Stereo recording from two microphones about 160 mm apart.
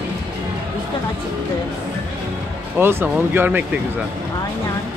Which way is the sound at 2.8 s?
15° right (ahead or behind).